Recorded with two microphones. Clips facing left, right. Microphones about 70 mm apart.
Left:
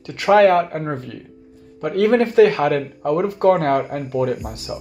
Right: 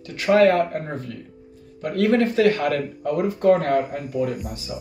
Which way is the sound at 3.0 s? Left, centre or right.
Left.